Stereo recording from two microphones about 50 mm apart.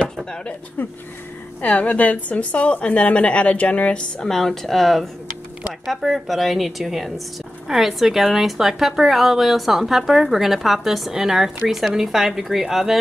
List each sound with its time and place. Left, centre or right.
0.8 s speech: left
1.6 s a woman's voice: left
4.2 s speech: centre